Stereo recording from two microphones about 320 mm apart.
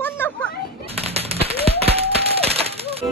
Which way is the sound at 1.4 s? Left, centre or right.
Centre.